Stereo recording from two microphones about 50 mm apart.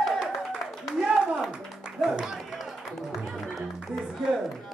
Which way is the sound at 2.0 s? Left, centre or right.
Centre.